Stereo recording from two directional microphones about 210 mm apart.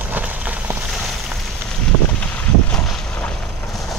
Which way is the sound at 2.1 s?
5° left (ahead or behind).